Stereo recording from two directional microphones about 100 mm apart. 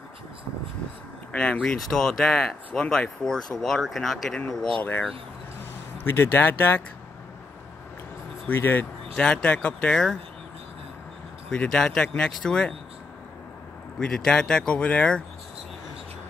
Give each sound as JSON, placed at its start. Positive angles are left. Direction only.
{"t": 1.3, "sound": "speech", "side_deg": 10}
{"t": 6.0, "sound": "speech", "side_deg": 20}
{"t": 8.5, "sound": "speech", "side_deg": 20}
{"t": 9.1, "sound": "speech", "side_deg": 10}
{"t": 11.5, "sound": "speech", "side_deg": 10}
{"t": 13.9, "sound": "speech", "side_deg": 5}